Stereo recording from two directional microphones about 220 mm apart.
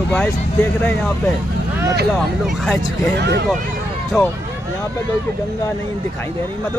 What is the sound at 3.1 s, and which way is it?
Speech, 50° right (ahead or behind).